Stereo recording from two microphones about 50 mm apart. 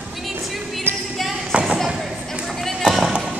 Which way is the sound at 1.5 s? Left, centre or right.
Centre.